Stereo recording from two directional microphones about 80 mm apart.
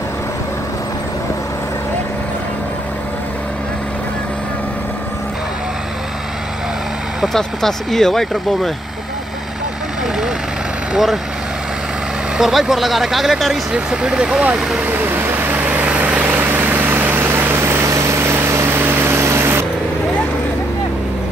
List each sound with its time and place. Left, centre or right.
7.3 s speech: centre
10.9 s speech: centre
12.4 s speech: centre
14.8 s vehicle: right